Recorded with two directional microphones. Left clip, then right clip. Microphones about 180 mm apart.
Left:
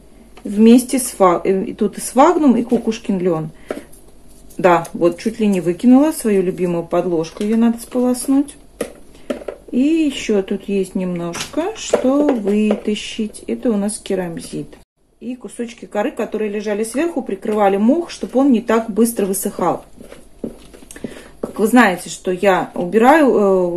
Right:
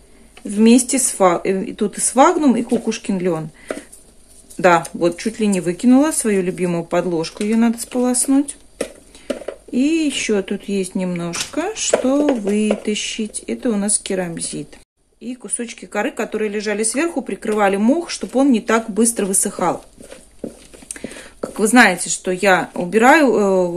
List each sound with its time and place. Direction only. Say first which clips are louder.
0.6 s speech: left 2 dB; 20° right (ahead or behind)
9.7 s speech: left 2 dB; 25° right (ahead or behind)
20.9 s speech: even; 30° right (ahead or behind)